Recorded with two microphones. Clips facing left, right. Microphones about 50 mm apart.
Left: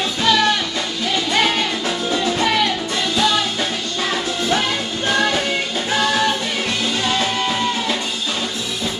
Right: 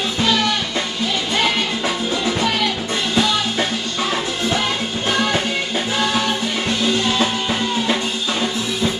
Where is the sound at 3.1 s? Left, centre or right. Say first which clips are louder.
Even; right.